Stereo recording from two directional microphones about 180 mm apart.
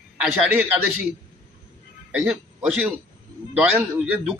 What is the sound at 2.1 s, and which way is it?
A man's voice, 5° right (ahead or behind).